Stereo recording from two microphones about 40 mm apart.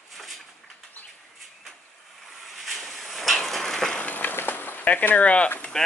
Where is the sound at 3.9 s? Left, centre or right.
Left.